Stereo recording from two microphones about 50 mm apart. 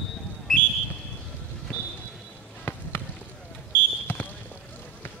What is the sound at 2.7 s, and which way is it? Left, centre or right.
Basketball bounce, left.